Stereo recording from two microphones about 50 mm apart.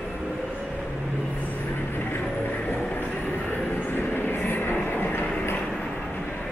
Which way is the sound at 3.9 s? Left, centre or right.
Left.